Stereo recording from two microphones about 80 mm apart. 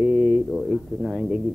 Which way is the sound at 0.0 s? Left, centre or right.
Centre.